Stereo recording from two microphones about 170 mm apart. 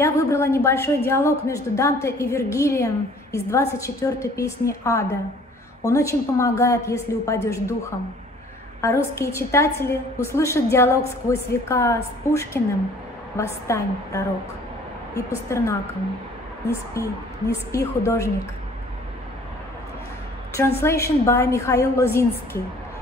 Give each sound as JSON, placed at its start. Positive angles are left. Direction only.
{"t": 0.0, "sound": "a woman's voice", "side_deg": 15}
{"t": 8.8, "sound": "a woman's voice", "side_deg": 15}
{"t": 20.5, "sound": "a woman's voice", "side_deg": 15}